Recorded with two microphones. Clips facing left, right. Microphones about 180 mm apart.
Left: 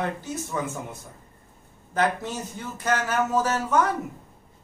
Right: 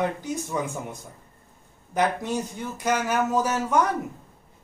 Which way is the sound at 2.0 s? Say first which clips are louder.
Right 1 dB; 15° right (ahead or behind).